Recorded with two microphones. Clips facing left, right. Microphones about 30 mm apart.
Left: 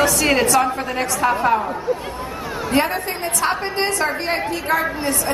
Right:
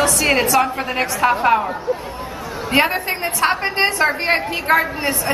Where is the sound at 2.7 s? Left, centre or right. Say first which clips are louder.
Right 3 dB; right.